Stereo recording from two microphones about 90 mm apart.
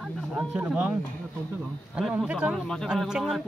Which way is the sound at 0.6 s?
15° right (ahead or behind).